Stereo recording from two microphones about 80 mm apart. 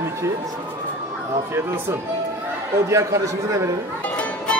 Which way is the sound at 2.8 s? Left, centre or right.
Right.